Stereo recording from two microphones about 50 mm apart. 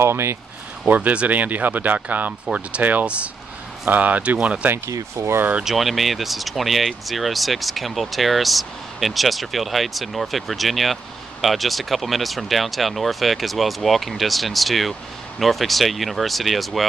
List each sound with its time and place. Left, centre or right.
0.0 s speech: right
0.8 s speech: right
4.8 s speech: right
5.6 s speech: centre